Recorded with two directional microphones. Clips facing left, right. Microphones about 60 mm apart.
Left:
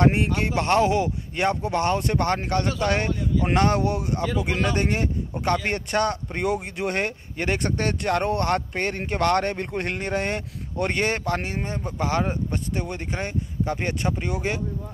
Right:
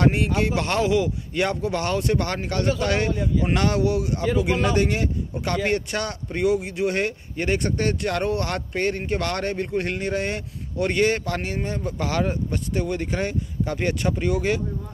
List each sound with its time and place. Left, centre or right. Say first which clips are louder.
0.0 s a man's voice: even; left
4.2 s speech: right 3 dB; centre
4.7 s a man's voice: right 2 dB; left
8.1 s a man's voice: left 2 dB; left
11.4 s speech: right 2 dB; left